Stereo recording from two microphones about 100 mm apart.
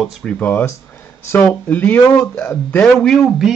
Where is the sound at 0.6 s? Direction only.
25° left (ahead or behind).